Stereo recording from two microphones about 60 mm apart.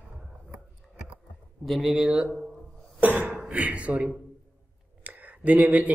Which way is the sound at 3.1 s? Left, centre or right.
Right.